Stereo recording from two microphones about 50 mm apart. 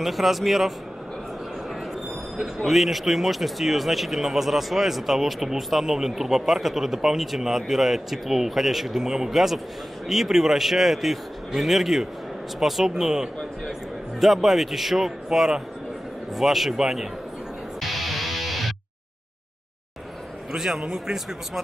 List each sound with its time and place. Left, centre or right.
0.0 s speech: centre
2.4 s speech: centre
17.7 s music: centre
20.5 s speech: centre